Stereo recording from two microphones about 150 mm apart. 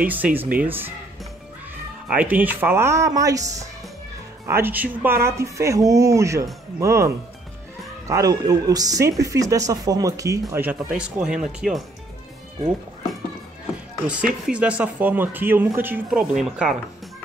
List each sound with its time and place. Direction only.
0.0 s speech: 10° right (ahead or behind)
2.0 s a woman's voice: 10° right (ahead or behind)
8.1 s a woman's voice: 25° right (ahead or behind)
10.5 s speech: 10° right (ahead or behind)
14.4 s speech: 10° right (ahead or behind)
16.1 s speech: 5° right (ahead or behind)